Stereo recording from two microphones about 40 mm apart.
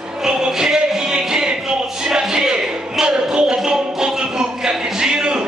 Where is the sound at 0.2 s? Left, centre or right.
Centre.